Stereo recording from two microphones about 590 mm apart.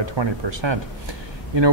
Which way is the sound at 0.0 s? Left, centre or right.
Right.